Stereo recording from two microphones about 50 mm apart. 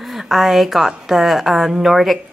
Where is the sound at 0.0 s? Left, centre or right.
Centre.